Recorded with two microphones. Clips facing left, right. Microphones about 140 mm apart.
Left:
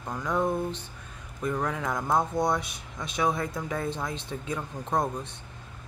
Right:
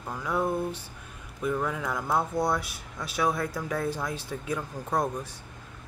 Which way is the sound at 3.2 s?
Centre (ahead or behind).